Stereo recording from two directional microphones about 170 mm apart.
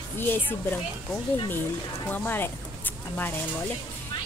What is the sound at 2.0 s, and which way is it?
Speech, 10° left (ahead or behind).